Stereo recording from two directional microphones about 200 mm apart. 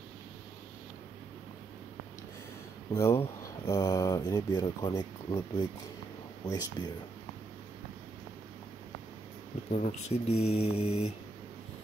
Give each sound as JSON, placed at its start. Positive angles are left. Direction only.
{"t": 2.9, "sound": "speech", "side_deg": 15}
{"t": 9.7, "sound": "speech", "side_deg": 35}